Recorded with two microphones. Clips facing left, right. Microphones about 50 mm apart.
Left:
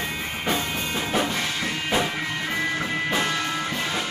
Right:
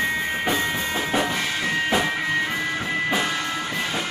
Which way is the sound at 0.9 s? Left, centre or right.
Centre.